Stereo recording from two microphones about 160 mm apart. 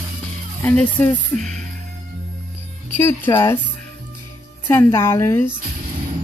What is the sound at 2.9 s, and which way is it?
Speech, 15° left (ahead or behind).